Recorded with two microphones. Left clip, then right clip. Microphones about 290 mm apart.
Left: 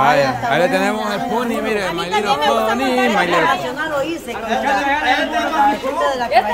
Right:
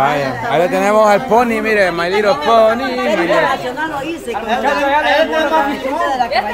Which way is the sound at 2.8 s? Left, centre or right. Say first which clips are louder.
Left 1 dB; centre.